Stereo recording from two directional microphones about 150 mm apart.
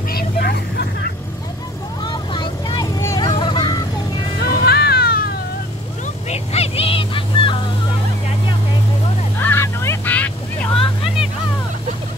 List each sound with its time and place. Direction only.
0.1 s vehicle: 90° left
2.0 s vehicle: 30° left (ahead or behind)
3.0 s vehicle: 20° left (ahead or behind)
3.3 s vehicle: 30° left (ahead or behind)
4.4 s music: 90° left
6.2 s vehicle: 45° left (ahead or behind)
9.4 s vehicle: 15° left (ahead or behind)
10.7 s vehicle: 35° left (ahead or behind)